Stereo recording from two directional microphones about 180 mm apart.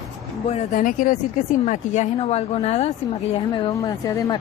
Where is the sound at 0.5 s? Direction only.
45° left (ahead or behind).